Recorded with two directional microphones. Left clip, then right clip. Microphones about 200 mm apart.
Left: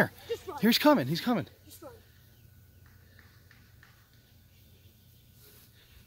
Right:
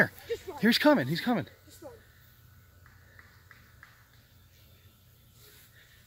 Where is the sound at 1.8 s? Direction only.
25° left (ahead or behind).